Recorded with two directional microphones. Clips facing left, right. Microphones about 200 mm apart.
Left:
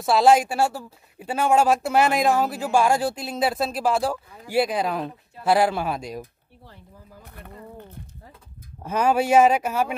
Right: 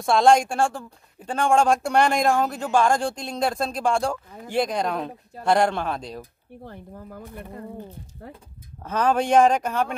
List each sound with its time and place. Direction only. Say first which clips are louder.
0.0 s speech: even; 5° left (ahead or behind)
6.6 s speech: right 9 dB; 55° right (ahead or behind)
8.8 s speech: left 1 dB; 10° left (ahead or behind)